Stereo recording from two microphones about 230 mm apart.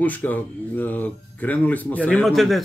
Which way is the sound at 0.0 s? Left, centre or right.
Centre.